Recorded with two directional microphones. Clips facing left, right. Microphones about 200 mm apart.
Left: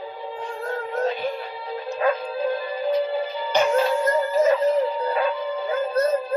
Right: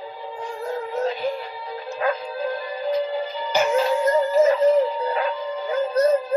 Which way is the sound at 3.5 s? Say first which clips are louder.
Left 1 dB; 5° right (ahead or behind).